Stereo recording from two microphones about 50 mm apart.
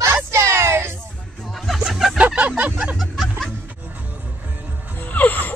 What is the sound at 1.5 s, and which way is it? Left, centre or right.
Music, centre.